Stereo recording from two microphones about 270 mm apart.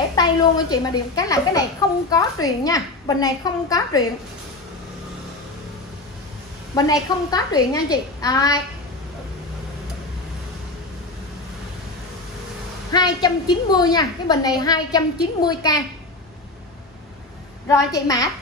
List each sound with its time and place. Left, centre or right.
0.1 s a woman's voice: centre
6.7 s a woman's voice: centre
12.9 s a woman's voice: centre
17.6 s a woman's voice: centre